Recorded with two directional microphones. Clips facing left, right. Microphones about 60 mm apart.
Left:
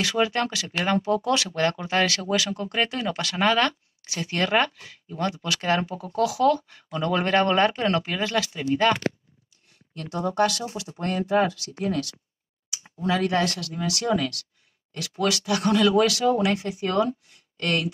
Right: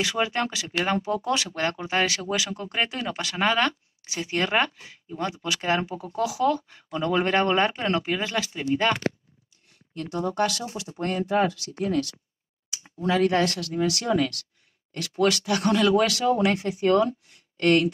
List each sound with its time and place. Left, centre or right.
0.0 s speech: right
9.9 s speech: right
11.4 s speech: right
13.0 s speech: right
14.0 s speech: right
15.0 s speech: right